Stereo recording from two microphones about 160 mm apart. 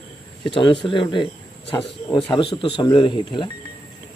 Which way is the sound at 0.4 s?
30° left (ahead or behind).